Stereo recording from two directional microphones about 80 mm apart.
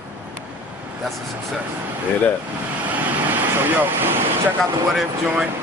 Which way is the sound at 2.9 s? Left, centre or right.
Right.